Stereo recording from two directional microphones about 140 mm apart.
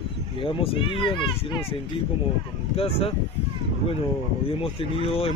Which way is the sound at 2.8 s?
45° left (ahead or behind).